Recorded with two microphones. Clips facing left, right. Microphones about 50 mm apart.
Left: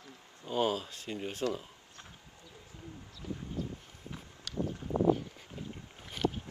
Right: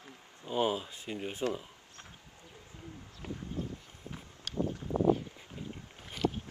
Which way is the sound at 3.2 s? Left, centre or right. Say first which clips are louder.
Left 1 dB; right.